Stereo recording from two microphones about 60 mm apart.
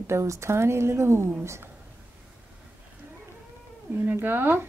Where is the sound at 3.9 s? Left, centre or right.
Right.